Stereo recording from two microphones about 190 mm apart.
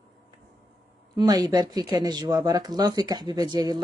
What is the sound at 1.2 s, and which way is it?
Speech, 20° right (ahead or behind).